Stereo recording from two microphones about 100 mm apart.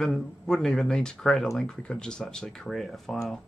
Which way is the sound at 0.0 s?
5° left (ahead or behind).